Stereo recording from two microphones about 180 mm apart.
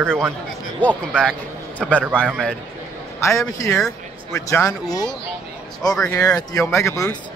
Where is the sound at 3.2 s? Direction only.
15° left (ahead or behind).